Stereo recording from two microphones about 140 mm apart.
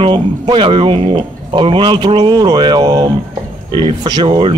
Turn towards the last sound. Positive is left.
turn(degrees=-35)  # may be behind; listen again after turning